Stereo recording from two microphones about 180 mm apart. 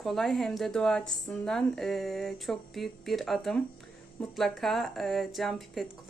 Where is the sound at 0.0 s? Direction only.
Centre (ahead or behind).